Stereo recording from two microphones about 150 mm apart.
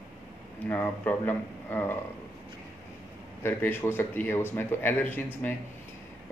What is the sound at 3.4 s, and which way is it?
Speech, 15° left (ahead or behind).